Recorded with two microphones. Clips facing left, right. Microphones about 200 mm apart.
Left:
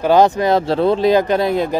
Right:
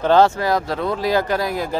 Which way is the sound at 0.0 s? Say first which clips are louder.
Left 2 dB; 15° left (ahead or behind).